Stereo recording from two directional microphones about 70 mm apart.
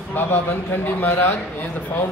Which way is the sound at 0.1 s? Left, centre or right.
Left.